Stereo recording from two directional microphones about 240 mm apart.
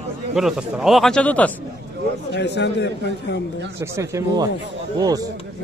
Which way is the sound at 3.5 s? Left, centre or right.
Right.